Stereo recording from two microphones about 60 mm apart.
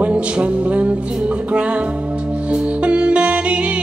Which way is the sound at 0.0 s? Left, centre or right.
Right.